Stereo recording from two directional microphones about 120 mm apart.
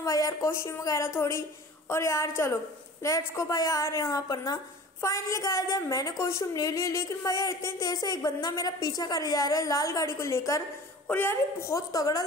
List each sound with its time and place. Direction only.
0.0 s a woman's voice: 30° left (ahead or behind)